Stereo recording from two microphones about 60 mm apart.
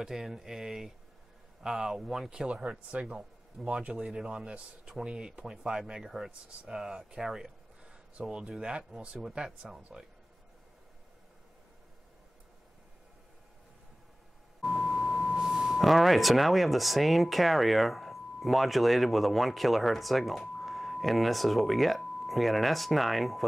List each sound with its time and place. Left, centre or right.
0.0 s speech: centre
14.6 s beep: centre
15.3 s speech: centre